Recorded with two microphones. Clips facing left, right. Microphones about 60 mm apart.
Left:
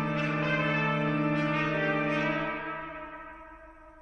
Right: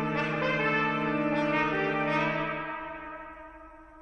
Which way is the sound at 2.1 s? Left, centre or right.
Right.